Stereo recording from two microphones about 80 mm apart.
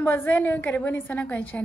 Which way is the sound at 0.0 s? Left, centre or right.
Left.